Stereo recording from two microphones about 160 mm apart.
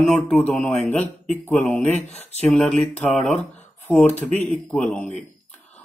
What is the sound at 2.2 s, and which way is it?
Speech, 45° left (ahead or behind).